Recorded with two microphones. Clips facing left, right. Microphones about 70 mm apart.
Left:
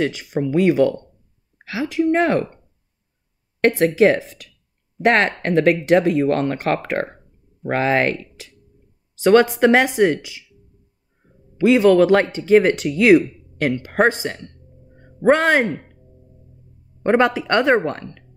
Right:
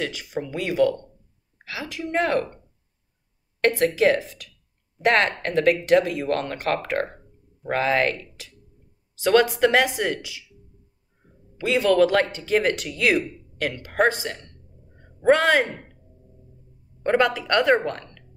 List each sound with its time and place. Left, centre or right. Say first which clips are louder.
0.0 s speech: left 7 dB; left
3.6 s speech: left 4 dB; left
11.5 s speech: left 7 dB; left
17.0 s speech: left 4 dB; left